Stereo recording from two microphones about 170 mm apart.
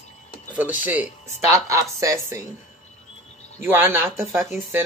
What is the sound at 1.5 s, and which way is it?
Speech, 20° right (ahead or behind).